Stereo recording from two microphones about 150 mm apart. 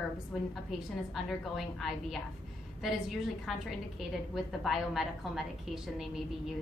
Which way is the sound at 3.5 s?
Centre (ahead or behind).